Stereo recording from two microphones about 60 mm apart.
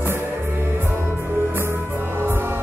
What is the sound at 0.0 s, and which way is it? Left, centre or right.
Music, right.